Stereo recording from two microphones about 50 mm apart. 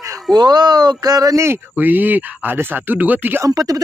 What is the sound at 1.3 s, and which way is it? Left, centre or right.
Speech, right.